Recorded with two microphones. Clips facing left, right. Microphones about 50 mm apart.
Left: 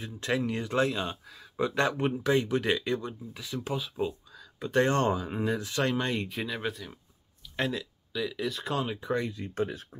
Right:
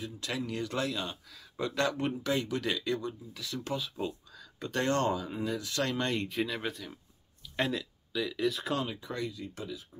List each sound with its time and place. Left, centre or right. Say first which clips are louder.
0.0 s speech: left 6 dB; left; by 4.1 s centre
4.7 s speech: left 4 dB; left
5.7 s speech: left 3 dB; centre
8.8 s speech: left 6 dB; left